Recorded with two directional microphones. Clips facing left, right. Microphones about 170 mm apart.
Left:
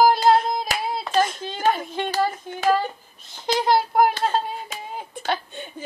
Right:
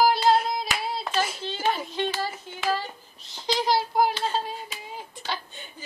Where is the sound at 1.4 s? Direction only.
50° left (ahead or behind).